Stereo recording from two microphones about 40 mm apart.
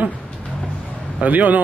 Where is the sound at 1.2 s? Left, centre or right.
Right.